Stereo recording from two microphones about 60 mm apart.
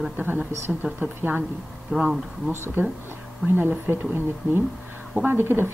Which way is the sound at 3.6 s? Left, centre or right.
Right.